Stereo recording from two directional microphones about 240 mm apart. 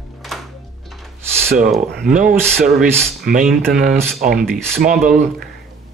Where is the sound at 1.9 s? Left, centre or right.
Centre.